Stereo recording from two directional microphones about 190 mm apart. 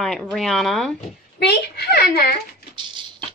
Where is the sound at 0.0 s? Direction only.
5° left (ahead or behind).